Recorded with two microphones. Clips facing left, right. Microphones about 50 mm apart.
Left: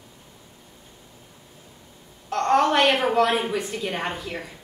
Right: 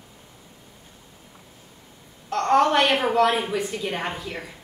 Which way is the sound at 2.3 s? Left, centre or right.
Centre.